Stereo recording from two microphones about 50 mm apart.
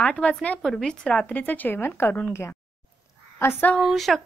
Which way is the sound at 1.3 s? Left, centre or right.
Left.